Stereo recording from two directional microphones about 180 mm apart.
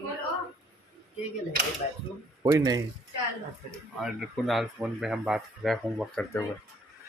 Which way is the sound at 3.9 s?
Centre (ahead or behind).